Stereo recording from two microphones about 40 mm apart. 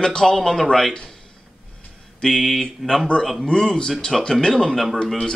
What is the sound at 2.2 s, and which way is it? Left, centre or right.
Speech, centre.